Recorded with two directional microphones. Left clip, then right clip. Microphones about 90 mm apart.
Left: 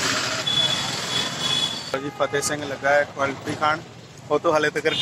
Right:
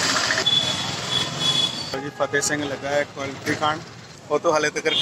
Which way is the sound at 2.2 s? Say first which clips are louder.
Right 2 dB; 5° left (ahead or behind).